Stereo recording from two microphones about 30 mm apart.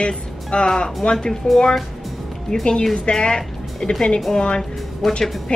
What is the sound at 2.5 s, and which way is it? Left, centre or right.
Speech, left.